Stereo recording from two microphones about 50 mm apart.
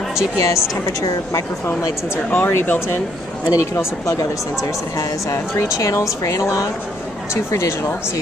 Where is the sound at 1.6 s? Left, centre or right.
Left.